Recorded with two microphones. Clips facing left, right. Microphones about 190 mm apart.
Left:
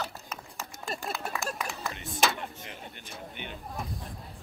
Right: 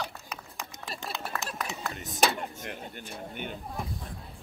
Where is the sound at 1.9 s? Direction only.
40° right (ahead or behind).